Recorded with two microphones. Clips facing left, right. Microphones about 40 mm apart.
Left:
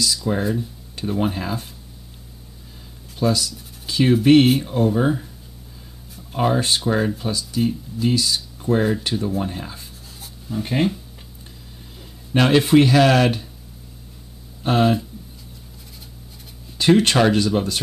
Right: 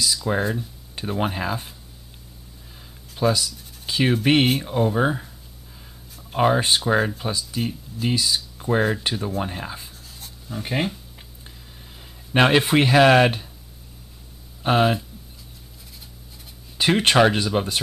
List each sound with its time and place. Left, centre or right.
0.0 s speech: centre
0.9 s speech: centre
3.2 s writing: centre
4.2 s speech: centre
6.3 s speech: centre
10.2 s writing: centre
12.0 s speech: right
14.6 s speech: centre
16.7 s speech: centre